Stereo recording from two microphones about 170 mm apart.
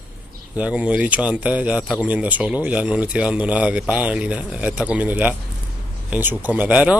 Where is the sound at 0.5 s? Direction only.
5° right (ahead or behind).